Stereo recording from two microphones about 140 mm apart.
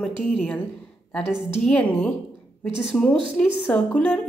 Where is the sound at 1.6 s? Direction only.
5° left (ahead or behind).